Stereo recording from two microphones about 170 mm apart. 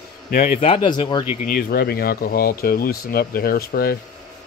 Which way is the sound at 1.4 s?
60° left (ahead or behind).